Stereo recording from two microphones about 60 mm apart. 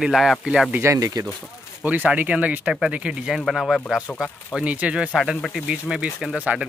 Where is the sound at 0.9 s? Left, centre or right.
Right.